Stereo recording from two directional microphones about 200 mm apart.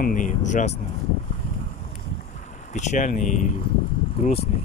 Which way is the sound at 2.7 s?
35° left (ahead or behind).